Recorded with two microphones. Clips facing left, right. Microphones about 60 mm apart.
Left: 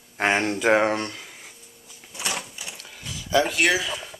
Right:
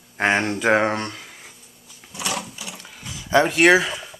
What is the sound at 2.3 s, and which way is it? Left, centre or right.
Sewing machine, left.